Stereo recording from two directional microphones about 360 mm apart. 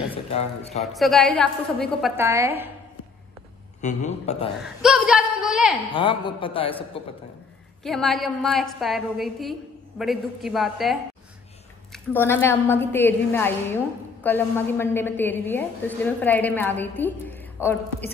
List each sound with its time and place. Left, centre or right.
0.1 s speech: centre
0.9 s a woman's voice: centre
3.8 s a man's voice: centre
4.8 s a woman's voice: centre
5.9 s a woman's voice: centre
7.8 s a woman's voice: centre